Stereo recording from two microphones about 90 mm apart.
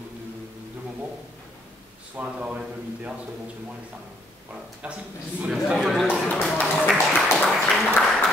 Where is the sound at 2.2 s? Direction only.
15° right (ahead or behind).